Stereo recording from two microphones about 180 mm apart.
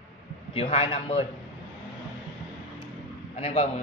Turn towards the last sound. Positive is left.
turn(degrees=35)  # may be behind; listen again after turning